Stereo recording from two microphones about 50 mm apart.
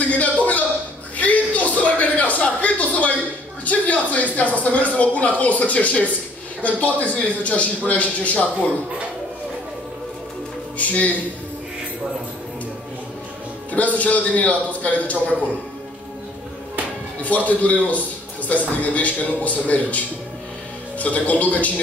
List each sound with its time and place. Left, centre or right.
0.2 s a sound: left
3.6 s a man's voice: left
10.8 s a man's voice: left
13.7 s a man's voice: left
17.2 s a man's voice: left
21.0 s a man's voice: left